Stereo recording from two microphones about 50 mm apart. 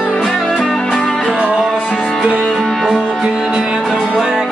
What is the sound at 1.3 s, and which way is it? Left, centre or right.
Music, centre.